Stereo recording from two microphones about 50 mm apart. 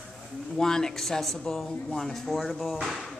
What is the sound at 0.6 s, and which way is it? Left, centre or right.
Speech, centre.